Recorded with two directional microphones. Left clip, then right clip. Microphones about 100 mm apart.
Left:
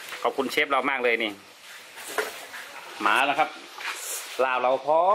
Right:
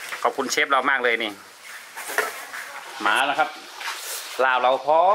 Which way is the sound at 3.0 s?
5° right (ahead or behind).